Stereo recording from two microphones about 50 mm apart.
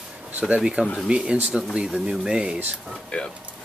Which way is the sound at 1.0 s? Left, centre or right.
Centre.